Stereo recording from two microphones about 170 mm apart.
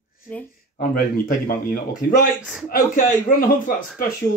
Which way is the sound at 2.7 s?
50° left (ahead or behind).